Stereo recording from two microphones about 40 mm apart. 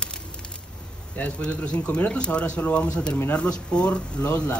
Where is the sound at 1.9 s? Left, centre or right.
Left.